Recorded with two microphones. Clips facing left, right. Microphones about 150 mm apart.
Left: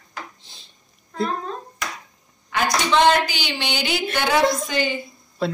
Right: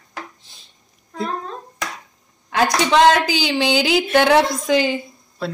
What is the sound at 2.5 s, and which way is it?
A woman's voice, 90° right.